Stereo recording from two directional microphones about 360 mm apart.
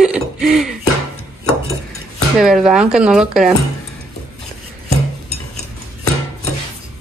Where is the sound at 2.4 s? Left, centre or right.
Centre.